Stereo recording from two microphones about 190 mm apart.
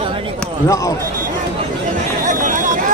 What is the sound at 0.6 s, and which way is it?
Speech, 15° left (ahead or behind).